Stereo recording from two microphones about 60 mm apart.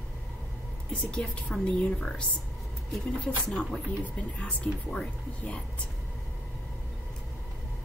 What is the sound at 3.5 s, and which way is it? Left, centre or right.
A woman's voice, centre.